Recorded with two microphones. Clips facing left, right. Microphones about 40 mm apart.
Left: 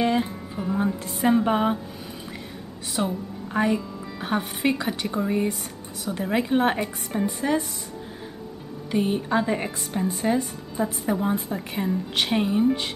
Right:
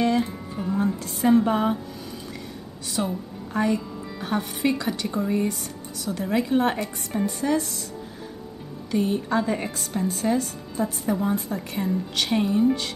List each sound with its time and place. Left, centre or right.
0.0 s music: centre
0.8 s speech: centre
3.0 s speech: centre
8.9 s speech: centre